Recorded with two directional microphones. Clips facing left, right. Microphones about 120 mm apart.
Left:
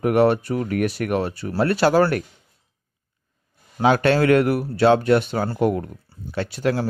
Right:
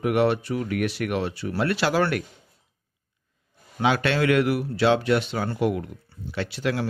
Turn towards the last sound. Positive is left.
turn(degrees=40)  # may be behind; listen again after turning